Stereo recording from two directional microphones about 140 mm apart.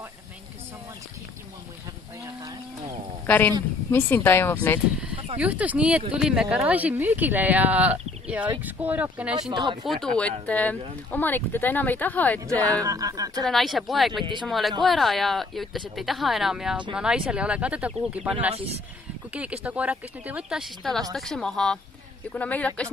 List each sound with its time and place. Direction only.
2.2 s cattle: 25° right (ahead or behind)
3.3 s speech: 10° left (ahead or behind)
5.4 s a woman's voice: 10° right (ahead or behind)
9.5 s speech: 30° right (ahead or behind)
9.8 s a woman's voice: 5° left (ahead or behind)
12.8 s speech: 25° right (ahead or behind)
13.4 s a woman's voice: centre (ahead or behind)
19.3 s a woman's voice: 10° right (ahead or behind); by 22.8 s 10° left (ahead or behind)